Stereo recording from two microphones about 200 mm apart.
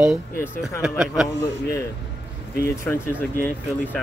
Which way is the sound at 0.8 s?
5° right (ahead or behind).